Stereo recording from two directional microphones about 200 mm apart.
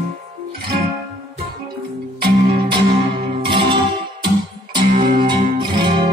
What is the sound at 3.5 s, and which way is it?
Music, 25° right (ahead or behind).